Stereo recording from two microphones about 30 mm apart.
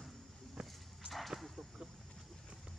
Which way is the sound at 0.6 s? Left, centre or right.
Right.